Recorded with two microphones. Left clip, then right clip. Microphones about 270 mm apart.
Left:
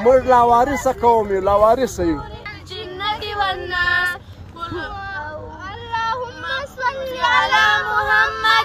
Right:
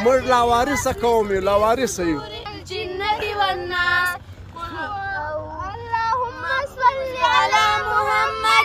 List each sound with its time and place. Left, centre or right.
0.1 s speech: centre
2.7 s female singing: right; by 4.2 s centre
6.4 s child singing: centre